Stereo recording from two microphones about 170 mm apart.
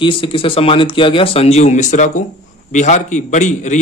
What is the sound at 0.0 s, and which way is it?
A man's voice, 30° left (ahead or behind).